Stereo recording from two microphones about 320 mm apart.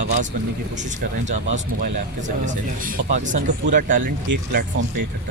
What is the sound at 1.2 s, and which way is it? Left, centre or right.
Speech, right.